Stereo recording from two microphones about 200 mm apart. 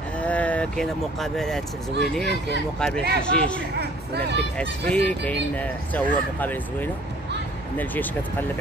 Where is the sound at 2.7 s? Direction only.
5° left (ahead or behind).